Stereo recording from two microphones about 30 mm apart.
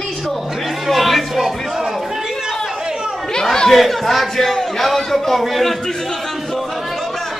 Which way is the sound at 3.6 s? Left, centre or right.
Centre.